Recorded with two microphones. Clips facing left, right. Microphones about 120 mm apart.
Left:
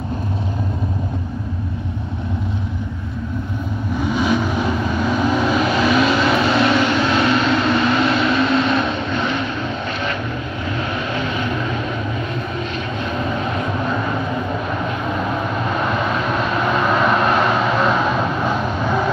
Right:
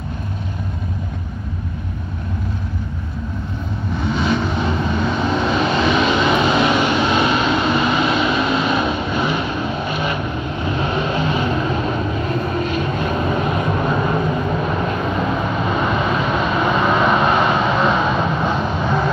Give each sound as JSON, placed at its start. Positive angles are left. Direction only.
{"t": 3.9, "sound": "vehicle", "side_deg": 10}
{"t": 6.7, "sound": "vehicle", "side_deg": -15}
{"t": 10.6, "sound": "vehicle", "side_deg": -25}
{"t": 15.7, "sound": "vehicle", "side_deg": 0}